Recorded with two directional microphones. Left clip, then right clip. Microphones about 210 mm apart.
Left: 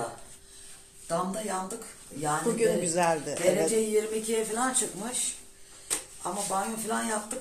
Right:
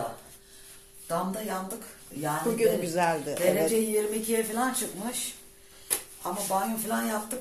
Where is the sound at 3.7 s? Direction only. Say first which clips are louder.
Even; 15° right (ahead or behind).